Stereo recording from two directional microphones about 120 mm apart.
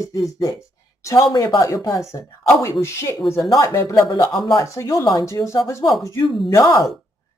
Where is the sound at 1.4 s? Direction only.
25° left (ahead or behind).